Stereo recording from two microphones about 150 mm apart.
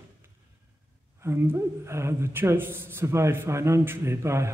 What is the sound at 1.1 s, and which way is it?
Speech, 15° right (ahead or behind).